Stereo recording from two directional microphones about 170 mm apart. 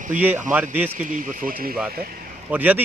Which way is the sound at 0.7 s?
10° right (ahead or behind).